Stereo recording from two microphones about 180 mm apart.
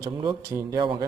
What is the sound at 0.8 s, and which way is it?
Speech, 25° right (ahead or behind).